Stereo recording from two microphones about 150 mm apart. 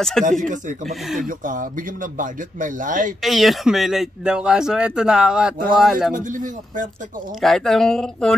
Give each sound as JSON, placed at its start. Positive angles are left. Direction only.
{"t": 0.2, "sound": "speech", "side_deg": 0}
{"t": 1.2, "sound": "speech", "side_deg": -65}
{"t": 3.2, "sound": "speech", "side_deg": 0}
{"t": 6.1, "sound": "speech", "side_deg": -60}
{"t": 7.4, "sound": "speech", "side_deg": 0}